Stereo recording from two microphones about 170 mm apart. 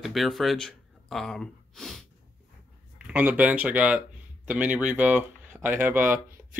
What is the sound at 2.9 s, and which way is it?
Speech, 10° right (ahead or behind).